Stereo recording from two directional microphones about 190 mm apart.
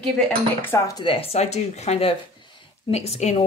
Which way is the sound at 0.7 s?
20° left (ahead or behind).